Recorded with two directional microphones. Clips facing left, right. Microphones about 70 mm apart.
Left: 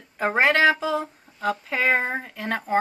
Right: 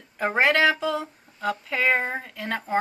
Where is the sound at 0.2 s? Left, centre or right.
Centre.